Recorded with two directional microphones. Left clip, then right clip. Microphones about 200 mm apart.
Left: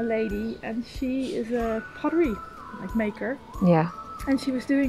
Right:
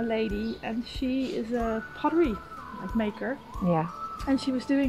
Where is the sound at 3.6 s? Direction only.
45° left (ahead or behind).